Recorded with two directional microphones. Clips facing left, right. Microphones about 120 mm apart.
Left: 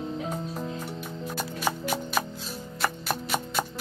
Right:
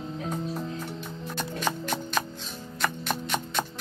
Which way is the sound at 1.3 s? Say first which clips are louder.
Even; 10° left (ahead or behind).